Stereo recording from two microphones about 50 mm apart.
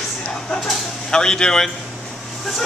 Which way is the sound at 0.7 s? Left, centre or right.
Centre.